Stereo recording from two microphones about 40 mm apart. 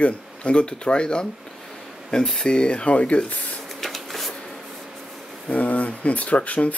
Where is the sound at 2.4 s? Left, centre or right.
Left.